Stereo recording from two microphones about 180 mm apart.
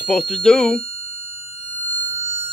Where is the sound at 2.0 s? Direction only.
90° left.